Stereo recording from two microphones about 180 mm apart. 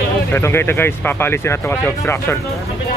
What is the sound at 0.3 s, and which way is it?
Speech, 15° left (ahead or behind).